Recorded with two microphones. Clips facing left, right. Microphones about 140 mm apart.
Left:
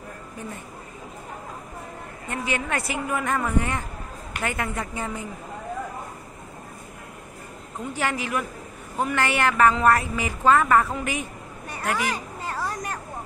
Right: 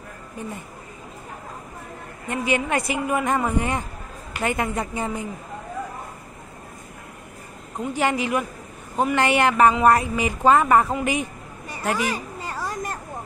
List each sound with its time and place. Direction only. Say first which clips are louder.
2.2 s a woman's voice: right 5 dB; 15° right (ahead or behind)
7.9 s a woman's voice: right 4 dB; 20° right (ahead or behind)
12.5 s vehicle: right 1 dB; 15° right (ahead or behind)